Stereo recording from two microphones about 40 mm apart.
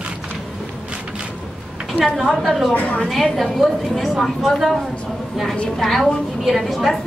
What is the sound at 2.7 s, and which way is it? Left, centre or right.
Speech, left.